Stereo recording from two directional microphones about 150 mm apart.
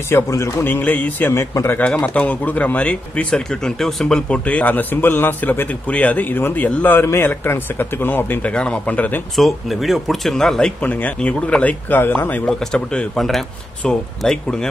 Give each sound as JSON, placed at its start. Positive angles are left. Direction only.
{"t": 0.1, "sound": "speech", "side_deg": 20}